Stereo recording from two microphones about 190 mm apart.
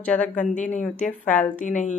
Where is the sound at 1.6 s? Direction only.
40° left (ahead or behind).